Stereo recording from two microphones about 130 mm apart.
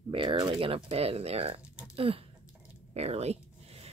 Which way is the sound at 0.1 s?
40° right (ahead or behind).